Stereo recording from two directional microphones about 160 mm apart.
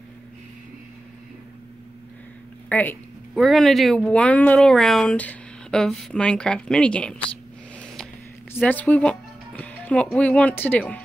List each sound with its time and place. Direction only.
2.7 s speech: 10° left (ahead or behind)
3.3 s speech: centre (ahead or behind)
7.8 s a sound: 5° left (ahead or behind)
8.5 s speech: 10° left (ahead or behind)